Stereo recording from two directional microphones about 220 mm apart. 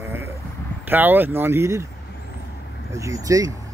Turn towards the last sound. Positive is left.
turn(degrees=-15)  # may be behind; listen again after turning